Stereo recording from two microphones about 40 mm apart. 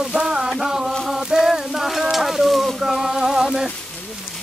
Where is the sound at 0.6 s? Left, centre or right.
Centre.